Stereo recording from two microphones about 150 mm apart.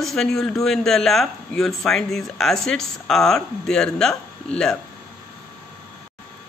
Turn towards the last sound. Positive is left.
turn(degrees=5)  # may be behind; listen again after turning